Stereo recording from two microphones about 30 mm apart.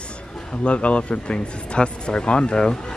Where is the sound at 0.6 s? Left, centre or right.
Left.